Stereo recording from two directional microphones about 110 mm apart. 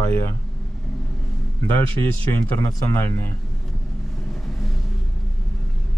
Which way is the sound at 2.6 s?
35° left (ahead or behind).